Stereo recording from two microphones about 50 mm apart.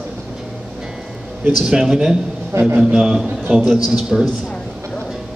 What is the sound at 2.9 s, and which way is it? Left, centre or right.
Speech, centre.